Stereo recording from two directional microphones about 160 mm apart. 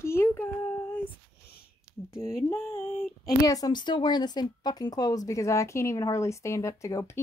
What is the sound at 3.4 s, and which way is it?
A woman's voice, 25° left (ahead or behind).